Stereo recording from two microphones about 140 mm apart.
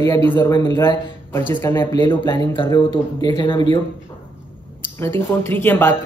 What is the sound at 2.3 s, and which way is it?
Speech, 35° left (ahead or behind).